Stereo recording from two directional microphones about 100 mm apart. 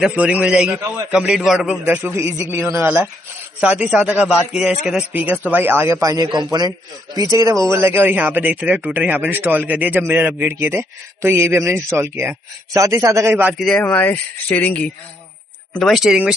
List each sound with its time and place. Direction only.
0.2 s a man's voice: 15° right (ahead or behind)
3.6 s a man's voice: 10° right (ahead or behind)
5.2 s speech: 15° right (ahead or behind)
6.2 s a man's voice: 45° right (ahead or behind)
7.2 s speech: 35° right (ahead or behind)
13.6 s speech: 5° left (ahead or behind)
13.8 s speech: 15° left (ahead or behind)
15.7 s speech: centre (ahead or behind)